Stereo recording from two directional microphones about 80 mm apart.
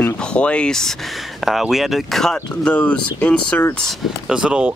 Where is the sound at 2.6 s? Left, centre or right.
Centre.